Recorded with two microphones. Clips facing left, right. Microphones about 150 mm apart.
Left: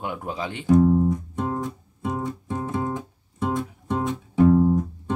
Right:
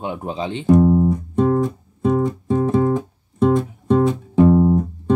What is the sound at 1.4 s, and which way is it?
Music, 75° right (ahead or behind).